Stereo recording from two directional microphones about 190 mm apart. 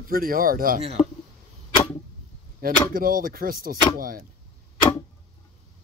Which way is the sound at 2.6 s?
50° right (ahead or behind).